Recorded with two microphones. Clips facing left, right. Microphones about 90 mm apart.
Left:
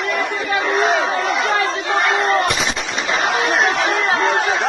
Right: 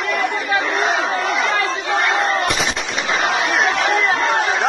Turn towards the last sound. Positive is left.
turn(degrees=35)  # may be behind; listen again after turning